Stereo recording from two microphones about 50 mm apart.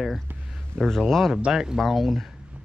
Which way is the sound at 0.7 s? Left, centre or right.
Centre.